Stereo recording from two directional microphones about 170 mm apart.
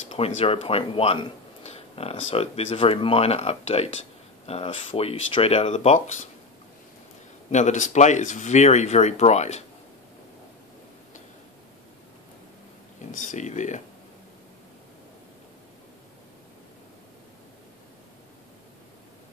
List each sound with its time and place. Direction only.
0.1 s speech: 35° left (ahead or behind)
7.5 s speech: 45° left (ahead or behind)
13.1 s speech: 50° left (ahead or behind)